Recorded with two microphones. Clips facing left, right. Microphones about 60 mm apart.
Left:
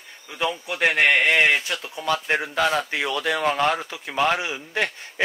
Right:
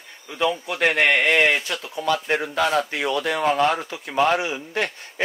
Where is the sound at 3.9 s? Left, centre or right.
Right.